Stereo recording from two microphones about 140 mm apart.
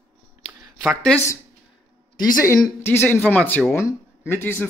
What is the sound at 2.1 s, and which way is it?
Speech, 25° left (ahead or behind).